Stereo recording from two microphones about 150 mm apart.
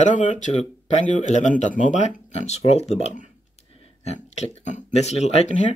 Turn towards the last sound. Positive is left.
turn(degrees=55)  # may be behind; listen again after turning